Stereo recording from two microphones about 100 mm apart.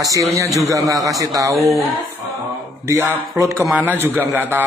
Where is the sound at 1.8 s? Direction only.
Centre (ahead or behind).